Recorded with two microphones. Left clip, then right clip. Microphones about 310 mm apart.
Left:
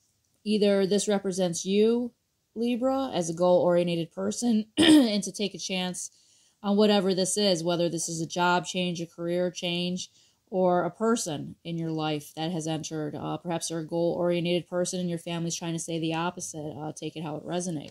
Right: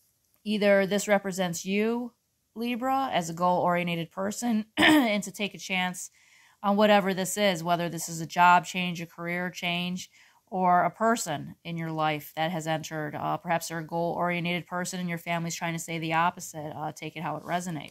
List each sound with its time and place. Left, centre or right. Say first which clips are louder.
0.4 s speech: right 1 dB; centre
5.2 s a woman's voice: left 1 dB; right
5.7 s speech: right 3 dB; centre